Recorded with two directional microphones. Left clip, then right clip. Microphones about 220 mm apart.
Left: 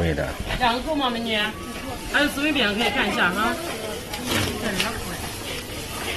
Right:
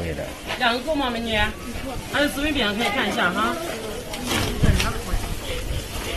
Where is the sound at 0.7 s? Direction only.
25° right (ahead or behind).